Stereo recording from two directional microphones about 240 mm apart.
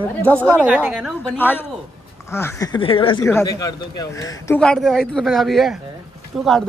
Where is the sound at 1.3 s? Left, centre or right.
Centre.